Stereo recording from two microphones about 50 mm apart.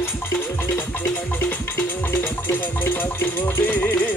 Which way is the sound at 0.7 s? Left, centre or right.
Left.